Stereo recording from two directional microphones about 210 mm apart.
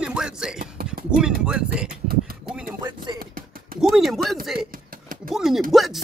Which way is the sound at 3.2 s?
45° right (ahead or behind).